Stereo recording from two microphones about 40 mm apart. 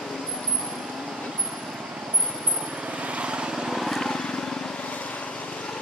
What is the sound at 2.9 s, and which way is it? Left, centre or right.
Vehicle, right.